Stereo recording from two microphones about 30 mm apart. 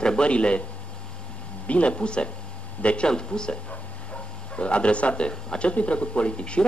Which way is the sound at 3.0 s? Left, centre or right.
Left.